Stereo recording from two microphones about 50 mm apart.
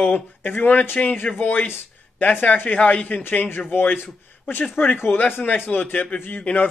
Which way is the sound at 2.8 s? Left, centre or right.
Left.